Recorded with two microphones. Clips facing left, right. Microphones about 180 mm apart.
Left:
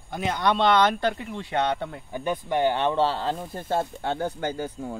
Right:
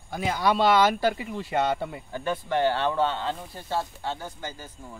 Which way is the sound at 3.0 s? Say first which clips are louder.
Left 2 dB; 40° left (ahead or behind).